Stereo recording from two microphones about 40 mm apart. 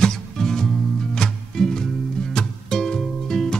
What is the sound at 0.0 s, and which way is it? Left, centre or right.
Music, centre.